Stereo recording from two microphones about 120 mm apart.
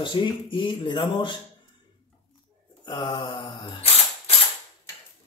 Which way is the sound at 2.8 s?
35° left (ahead or behind).